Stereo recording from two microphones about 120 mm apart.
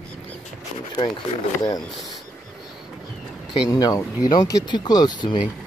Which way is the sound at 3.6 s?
30° left (ahead or behind).